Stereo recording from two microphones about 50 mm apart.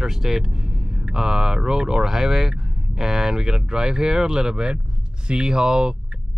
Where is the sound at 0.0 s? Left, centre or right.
Centre.